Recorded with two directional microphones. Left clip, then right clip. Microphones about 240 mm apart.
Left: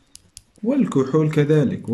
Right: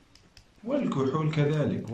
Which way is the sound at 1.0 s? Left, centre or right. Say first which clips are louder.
Left 10 dB; left.